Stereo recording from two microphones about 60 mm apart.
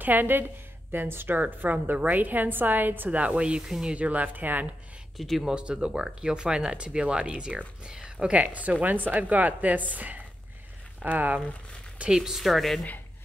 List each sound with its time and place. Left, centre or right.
0.0 s speech: right
5.1 s speech: centre
5.5 s speech: centre
12.0 s speech: centre